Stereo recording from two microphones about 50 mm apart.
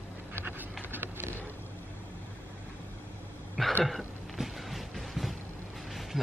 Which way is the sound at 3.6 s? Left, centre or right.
Centre.